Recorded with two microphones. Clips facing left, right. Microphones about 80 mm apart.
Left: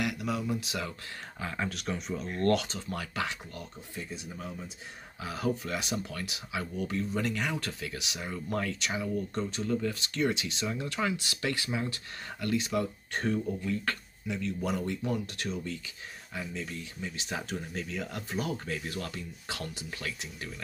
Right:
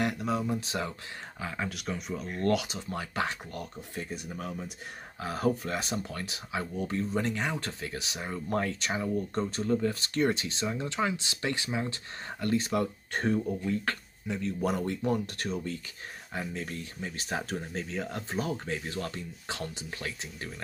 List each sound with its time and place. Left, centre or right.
0.0 s speech: right
1.4 s speech: centre
2.9 s speech: right
3.3 s speech: right
5.2 s speech: right
10.7 s speech: right
13.3 s speech: right